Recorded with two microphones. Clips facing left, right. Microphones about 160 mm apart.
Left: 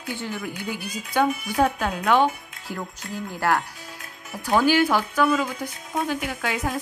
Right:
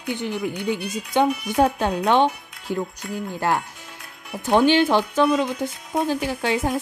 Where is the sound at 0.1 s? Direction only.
20° right (ahead or behind).